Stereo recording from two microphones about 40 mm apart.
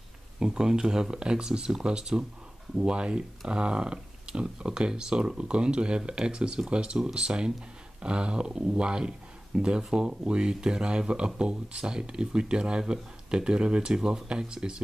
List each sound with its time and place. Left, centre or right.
0.4 s speech: centre